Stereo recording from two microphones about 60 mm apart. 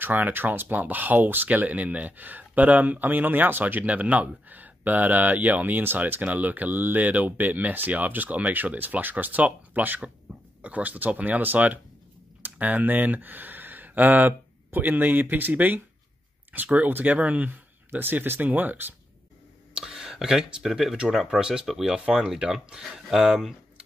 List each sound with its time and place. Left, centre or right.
0.0 s speech: right
19.7 s a sound: centre
20.6 s speech: centre